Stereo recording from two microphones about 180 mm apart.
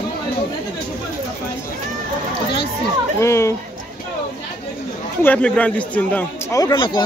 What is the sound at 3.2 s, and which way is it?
Speech, 15° left (ahead or behind).